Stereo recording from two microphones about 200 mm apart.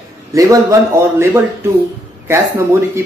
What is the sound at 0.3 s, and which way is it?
Speech, 15° right (ahead or behind).